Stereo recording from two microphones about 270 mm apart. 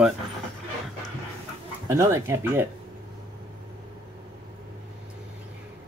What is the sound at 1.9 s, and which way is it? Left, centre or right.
Speech, centre.